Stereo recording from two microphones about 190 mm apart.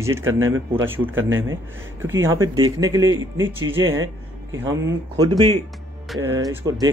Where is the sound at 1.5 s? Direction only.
15° right (ahead or behind).